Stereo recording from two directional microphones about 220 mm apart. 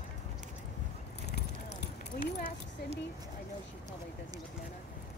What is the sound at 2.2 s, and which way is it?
Keys jangling, 25° right (ahead or behind).